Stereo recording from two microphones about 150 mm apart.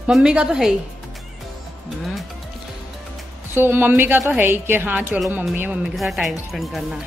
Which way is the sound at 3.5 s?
15° right (ahead or behind).